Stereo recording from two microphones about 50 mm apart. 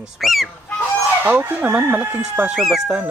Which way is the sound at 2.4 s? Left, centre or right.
Right.